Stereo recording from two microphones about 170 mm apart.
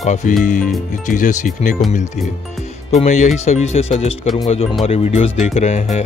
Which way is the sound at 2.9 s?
40° left (ahead or behind).